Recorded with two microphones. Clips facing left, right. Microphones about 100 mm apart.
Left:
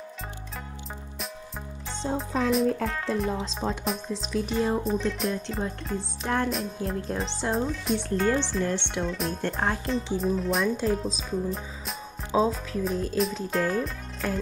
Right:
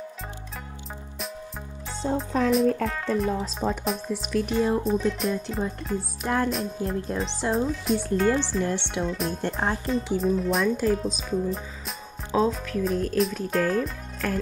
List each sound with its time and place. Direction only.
2.0 s music: centre (ahead or behind)
12.9 s music: 80° right
13.2 s music: centre (ahead or behind)